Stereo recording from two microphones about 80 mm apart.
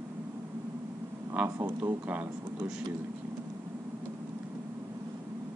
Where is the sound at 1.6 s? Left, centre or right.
Right.